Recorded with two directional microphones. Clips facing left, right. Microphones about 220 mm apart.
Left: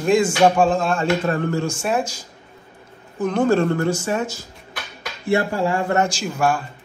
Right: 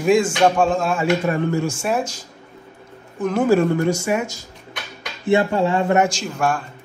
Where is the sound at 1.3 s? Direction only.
15° right (ahead or behind).